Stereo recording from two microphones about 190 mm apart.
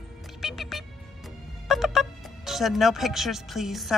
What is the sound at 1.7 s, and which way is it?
Speech, centre (ahead or behind).